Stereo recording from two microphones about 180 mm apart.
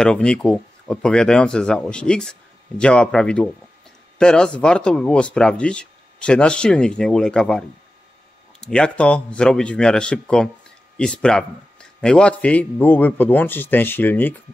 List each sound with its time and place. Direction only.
0.0 s speech: 5° left (ahead or behind)
8.6 s a man's voice: 5° left (ahead or behind)